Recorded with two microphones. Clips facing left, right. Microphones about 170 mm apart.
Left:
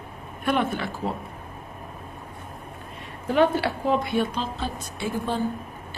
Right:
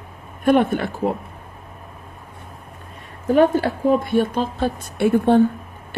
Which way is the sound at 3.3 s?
45° right (ahead or behind).